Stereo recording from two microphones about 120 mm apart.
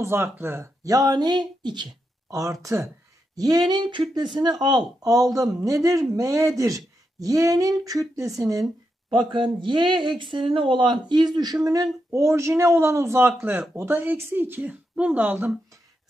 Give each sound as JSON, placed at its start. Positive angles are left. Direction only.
{"t": 0.0, "sound": "speech", "side_deg": -20}
{"t": 2.3, "sound": "speech", "side_deg": -30}
{"t": 9.1, "sound": "speech", "side_deg": -45}